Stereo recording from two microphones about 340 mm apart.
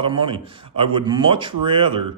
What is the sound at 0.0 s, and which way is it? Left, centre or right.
A man's voice, centre.